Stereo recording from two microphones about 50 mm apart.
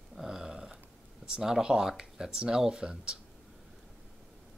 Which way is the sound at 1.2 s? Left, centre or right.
Centre.